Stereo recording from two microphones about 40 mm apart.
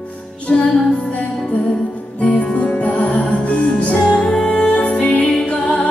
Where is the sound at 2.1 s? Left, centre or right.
Left; by 4.5 s centre.